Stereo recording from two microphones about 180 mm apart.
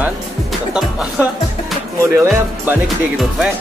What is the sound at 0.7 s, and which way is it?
Speech, 5° right (ahead or behind).